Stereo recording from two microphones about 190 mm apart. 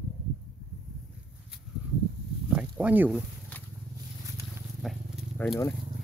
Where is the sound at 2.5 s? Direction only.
10° right (ahead or behind).